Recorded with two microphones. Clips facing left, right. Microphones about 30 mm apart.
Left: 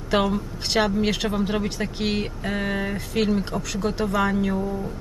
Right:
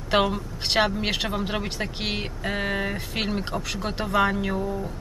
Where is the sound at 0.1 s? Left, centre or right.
Centre.